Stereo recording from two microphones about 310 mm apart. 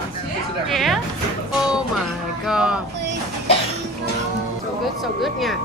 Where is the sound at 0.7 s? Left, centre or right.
Centre.